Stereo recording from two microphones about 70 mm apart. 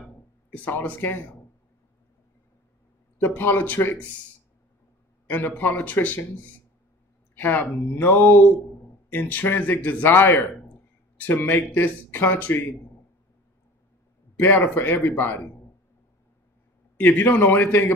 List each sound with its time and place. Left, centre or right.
0.5 s speech: left
3.2 s speech: left
5.2 s speech: left
14.4 s speech: left
17.0 s speech: left